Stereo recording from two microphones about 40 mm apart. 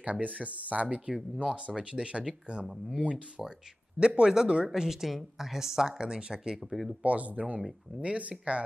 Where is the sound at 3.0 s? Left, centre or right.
Right.